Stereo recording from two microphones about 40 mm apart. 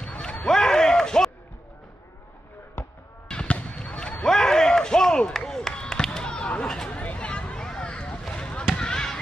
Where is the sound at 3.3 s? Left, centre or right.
Left.